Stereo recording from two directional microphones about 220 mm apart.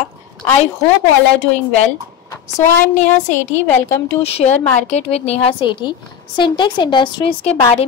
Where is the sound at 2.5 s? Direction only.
35° left (ahead or behind).